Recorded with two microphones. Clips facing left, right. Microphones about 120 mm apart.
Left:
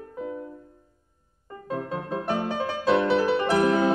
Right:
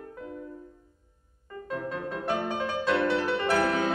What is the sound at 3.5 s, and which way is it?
Music, 35° left (ahead or behind).